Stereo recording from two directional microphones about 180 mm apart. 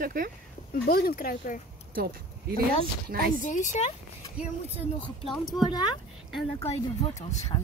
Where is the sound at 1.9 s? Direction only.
55° right (ahead or behind).